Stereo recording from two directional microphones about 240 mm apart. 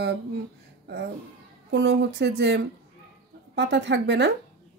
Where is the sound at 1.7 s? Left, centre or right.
Right.